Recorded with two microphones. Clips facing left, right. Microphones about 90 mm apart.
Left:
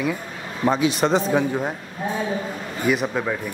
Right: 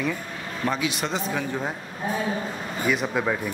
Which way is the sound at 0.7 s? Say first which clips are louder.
Left 8 dB; 30° left (ahead or behind).